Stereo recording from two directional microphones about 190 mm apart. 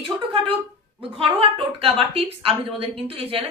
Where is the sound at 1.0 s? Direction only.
30° right (ahead or behind).